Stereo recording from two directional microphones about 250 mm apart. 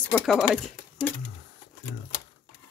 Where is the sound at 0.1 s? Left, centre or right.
Centre.